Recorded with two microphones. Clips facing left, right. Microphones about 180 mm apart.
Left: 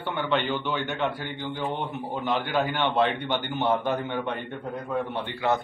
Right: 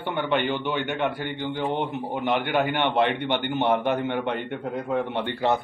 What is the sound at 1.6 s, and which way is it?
Speech, 15° right (ahead or behind).